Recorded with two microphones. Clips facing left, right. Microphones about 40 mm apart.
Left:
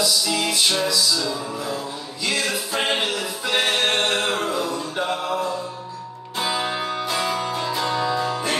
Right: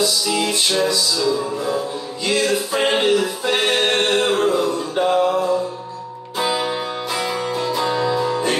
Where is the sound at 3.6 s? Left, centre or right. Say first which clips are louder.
Right 2 dB; centre.